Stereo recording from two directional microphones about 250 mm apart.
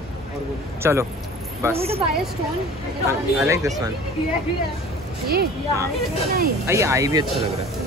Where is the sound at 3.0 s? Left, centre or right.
Centre.